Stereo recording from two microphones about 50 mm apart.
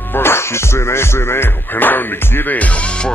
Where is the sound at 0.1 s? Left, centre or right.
Left.